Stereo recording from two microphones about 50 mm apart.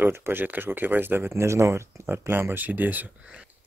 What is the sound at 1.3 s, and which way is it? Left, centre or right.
Speech, right.